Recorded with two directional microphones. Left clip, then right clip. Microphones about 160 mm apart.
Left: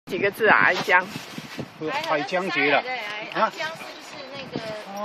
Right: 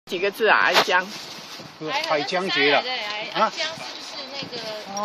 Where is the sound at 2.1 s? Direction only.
40° left (ahead or behind).